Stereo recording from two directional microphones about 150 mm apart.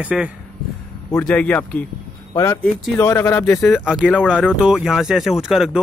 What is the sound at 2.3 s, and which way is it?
Speech, 20° left (ahead or behind).